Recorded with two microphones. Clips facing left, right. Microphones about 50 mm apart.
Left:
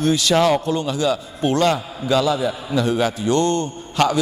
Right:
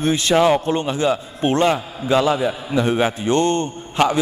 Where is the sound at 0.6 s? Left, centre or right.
Right.